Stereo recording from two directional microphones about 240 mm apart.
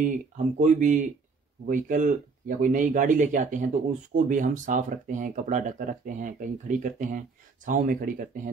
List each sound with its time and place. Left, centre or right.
0.6 s speech: right